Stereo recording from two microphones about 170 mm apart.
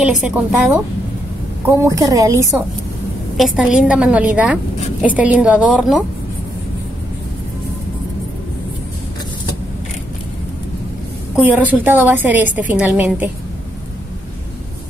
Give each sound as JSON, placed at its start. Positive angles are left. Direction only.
{"t": 0.0, "sound": "a woman's voice", "side_deg": -5}
{"t": 1.7, "sound": "a woman's voice", "side_deg": -20}
{"t": 3.3, "sound": "a woman's voice", "side_deg": -5}
{"t": 11.3, "sound": "a woman's voice", "side_deg": -10}